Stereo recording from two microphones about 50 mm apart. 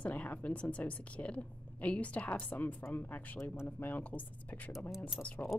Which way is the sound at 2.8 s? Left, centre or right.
Left.